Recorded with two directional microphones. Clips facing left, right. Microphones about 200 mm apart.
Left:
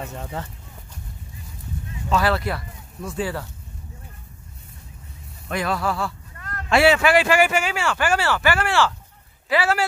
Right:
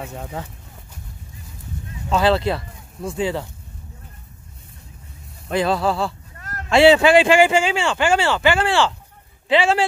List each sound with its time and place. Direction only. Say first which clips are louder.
0.0 s speech: right 1 dB; 10° right (ahead or behind)
2.1 s speech: right 4 dB; 25° right (ahead or behind)
5.5 s speech: right 5 dB; 30° right (ahead or behind)